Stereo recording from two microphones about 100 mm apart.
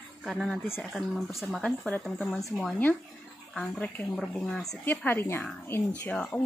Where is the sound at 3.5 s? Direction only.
10° left (ahead or behind).